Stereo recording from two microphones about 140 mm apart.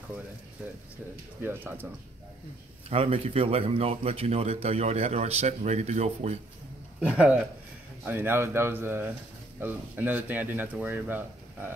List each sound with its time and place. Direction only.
1.4 s speech: 15° right (ahead or behind)
2.9 s speech: 45° right (ahead or behind)
7.0 s speech: 10° right (ahead or behind)